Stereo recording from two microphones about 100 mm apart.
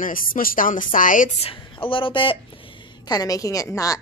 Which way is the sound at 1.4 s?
60° left (ahead or behind).